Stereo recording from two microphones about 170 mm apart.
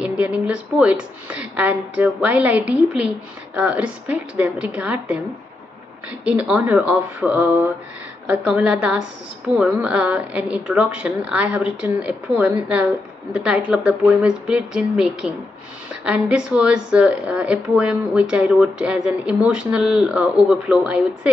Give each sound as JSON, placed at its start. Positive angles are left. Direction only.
{"t": 0.0, "sound": "a woman's voice", "side_deg": -5}
{"t": 6.2, "sound": "a woman's voice", "side_deg": -5}